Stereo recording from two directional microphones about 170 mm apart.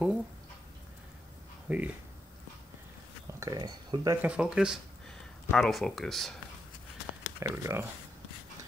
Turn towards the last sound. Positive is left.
turn(degrees=-15)  # may be behind; listen again after turning